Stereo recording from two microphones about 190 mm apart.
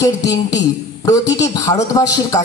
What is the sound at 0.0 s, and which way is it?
A man's voice, 20° left (ahead or behind).